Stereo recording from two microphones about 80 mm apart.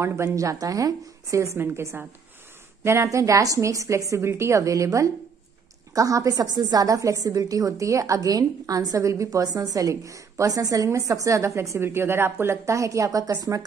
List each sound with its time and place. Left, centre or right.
0.0 s a woman's voice: right